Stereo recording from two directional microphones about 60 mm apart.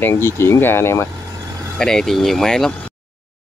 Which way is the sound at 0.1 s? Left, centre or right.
Left.